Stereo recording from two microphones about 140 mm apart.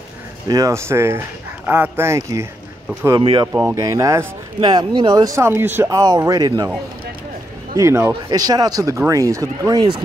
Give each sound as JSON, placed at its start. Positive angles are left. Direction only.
{"t": 0.5, "sound": "speech", "side_deg": -25}
{"t": 7.7, "sound": "speech", "side_deg": -20}